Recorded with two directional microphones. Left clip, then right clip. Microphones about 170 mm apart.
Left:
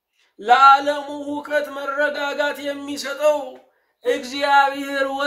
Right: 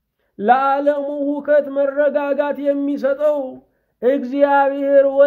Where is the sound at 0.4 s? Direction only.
45° right (ahead or behind).